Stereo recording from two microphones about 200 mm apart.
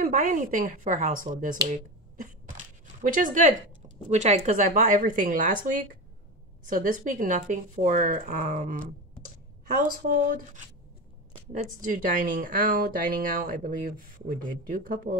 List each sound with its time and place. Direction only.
0.0 s speech: 40° right (ahead or behind)
1.7 s a sound: 40° right (ahead or behind)
4.1 s speech: 35° right (ahead or behind)
6.7 s speech: 40° right (ahead or behind)